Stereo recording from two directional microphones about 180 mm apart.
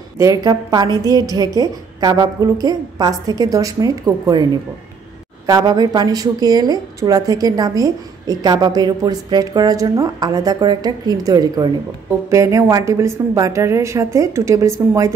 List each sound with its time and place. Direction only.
0.2 s a woman's voice: 20° right (ahead or behind)
5.5 s a woman's voice: 20° right (ahead or behind)